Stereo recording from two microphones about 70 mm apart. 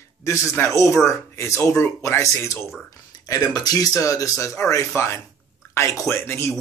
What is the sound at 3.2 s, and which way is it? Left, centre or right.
Speech, left.